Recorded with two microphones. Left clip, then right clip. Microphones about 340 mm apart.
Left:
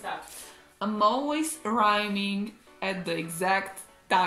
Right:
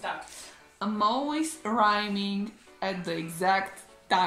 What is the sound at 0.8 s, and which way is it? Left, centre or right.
Speech, centre.